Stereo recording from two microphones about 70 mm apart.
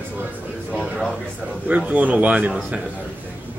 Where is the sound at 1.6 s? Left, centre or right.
Centre.